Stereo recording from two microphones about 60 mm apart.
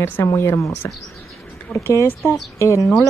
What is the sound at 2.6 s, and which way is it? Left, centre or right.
Speech, left.